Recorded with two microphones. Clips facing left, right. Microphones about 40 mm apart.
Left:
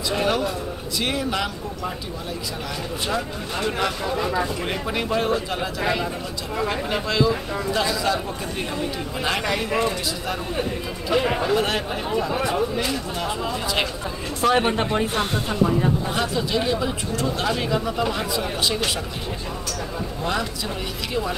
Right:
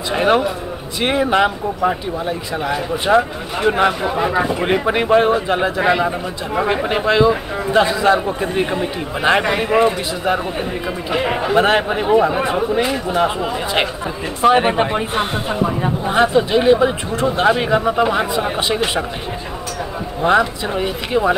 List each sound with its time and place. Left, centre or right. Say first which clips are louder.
0.1 s speech: right 8 dB; right
20.2 s speech: right 12 dB; right